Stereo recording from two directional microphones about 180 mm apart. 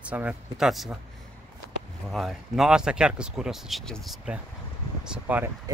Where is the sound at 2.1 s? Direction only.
Centre (ahead or behind).